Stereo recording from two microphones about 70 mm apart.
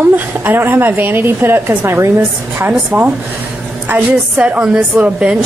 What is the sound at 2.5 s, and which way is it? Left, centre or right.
A woman's voice, right.